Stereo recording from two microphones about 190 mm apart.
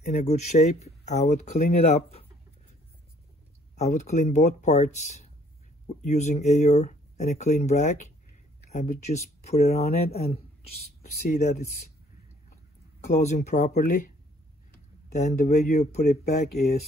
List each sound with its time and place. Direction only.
0.0 s speech: 35° left (ahead or behind)
3.7 s speech: 35° left (ahead or behind)
13.0 s speech: 35° left (ahead or behind)
15.1 s speech: 40° left (ahead or behind)
16.3 s speech: 55° left (ahead or behind)